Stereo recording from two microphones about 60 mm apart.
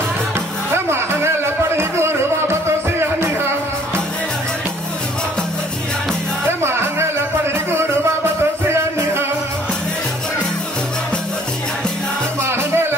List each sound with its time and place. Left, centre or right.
0.7 s music: right
6.4 s music: right
12.4 s music: right